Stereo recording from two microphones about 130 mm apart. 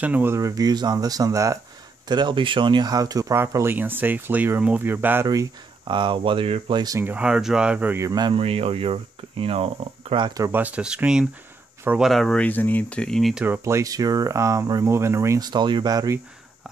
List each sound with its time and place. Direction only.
0.0 s speech: 15° right (ahead or behind)
2.0 s speech: 35° right (ahead or behind); by 5.2 s 15° right (ahead or behind)
5.2 s speech: 25° right (ahead or behind)
5.9 s speech: 40° right (ahead or behind)
7.0 s speech: 10° right (ahead or behind)
8.0 s speech: 30° right (ahead or behind)
8.4 s speech: 50° right (ahead or behind)
10.4 s speech: 15° right (ahead or behind)
13.5 s speech: 20° right (ahead or behind)